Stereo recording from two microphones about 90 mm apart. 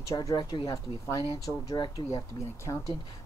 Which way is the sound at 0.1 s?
35° left (ahead or behind).